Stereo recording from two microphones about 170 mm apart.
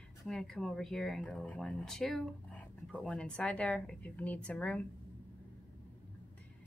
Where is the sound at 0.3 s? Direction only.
5° left (ahead or behind).